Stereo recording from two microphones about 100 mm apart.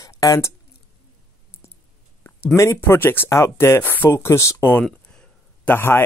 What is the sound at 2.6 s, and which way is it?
Speech, 30° left (ahead or behind).